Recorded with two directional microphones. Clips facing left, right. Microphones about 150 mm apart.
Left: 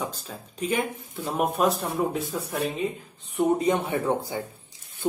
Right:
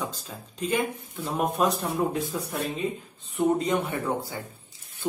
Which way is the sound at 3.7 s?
20° left (ahead or behind).